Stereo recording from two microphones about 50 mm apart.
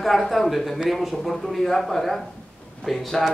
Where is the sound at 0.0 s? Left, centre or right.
Centre.